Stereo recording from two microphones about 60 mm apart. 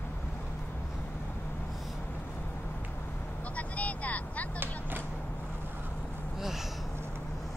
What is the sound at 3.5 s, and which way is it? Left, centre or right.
Vehicle, left.